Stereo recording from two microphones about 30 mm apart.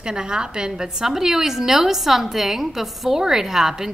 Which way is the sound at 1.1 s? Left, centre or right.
Centre.